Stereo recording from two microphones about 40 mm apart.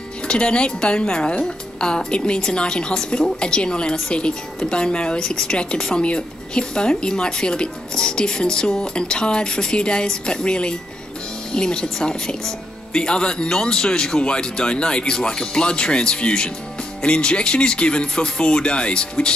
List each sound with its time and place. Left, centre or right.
0.3 s a woman's voice: left
5.2 s speech: centre
5.5 s a woman's voice: left